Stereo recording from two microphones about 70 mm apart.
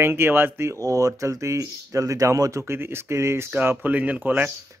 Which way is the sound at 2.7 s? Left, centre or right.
Right.